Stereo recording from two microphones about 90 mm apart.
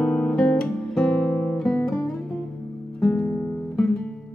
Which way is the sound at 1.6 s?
5° left (ahead or behind).